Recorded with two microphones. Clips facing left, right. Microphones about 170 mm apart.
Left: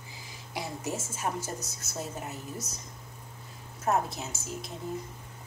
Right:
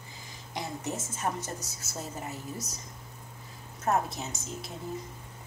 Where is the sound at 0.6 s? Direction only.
5° left (ahead or behind).